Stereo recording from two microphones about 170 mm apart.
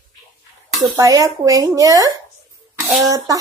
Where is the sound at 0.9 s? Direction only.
20° right (ahead or behind).